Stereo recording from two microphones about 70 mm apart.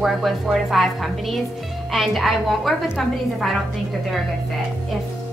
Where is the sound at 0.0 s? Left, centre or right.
Centre.